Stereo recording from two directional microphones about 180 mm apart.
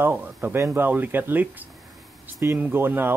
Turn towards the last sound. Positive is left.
turn(degrees=-10)  # may be behind; listen again after turning